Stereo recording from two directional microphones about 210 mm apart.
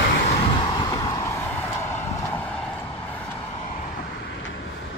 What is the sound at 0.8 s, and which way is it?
Vehicle, 15° left (ahead or behind).